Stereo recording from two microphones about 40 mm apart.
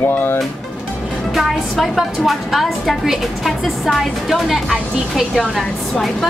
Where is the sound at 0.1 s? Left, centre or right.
Left.